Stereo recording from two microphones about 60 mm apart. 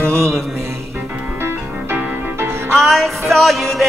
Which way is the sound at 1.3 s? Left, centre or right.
Right.